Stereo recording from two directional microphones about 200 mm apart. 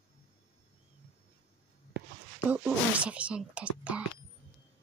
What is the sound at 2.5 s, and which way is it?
Speech, 5° right (ahead or behind).